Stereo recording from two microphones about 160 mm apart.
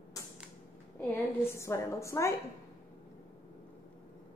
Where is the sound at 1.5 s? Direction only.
20° left (ahead or behind).